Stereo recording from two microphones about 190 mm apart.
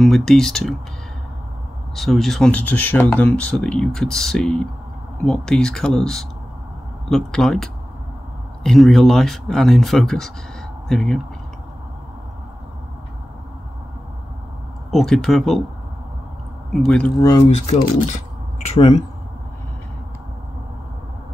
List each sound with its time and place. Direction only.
0.0 s speech: centre (ahead or behind)
2.0 s speech: centre (ahead or behind)
14.9 s speech: centre (ahead or behind)
16.7 s speech: 5° left (ahead or behind)
17.5 s speech: 35° left (ahead or behind)